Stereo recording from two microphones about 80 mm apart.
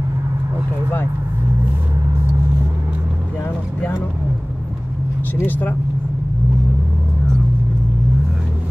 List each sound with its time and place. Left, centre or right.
5.3 s speech: left